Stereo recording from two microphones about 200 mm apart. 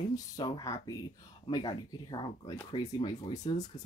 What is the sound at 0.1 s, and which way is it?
Speech, 20° left (ahead or behind).